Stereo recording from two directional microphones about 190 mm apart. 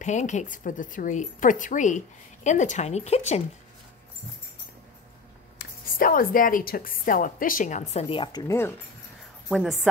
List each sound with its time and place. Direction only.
0.0 s a woman's voice: 40° left (ahead or behind)
5.6 s a woman's voice: 50° left (ahead or behind); by 8.7 s 15° left (ahead or behind)
9.5 s a woman's voice: centre (ahead or behind)